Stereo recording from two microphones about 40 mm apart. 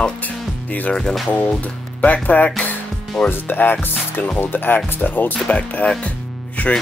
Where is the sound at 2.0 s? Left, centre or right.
Left.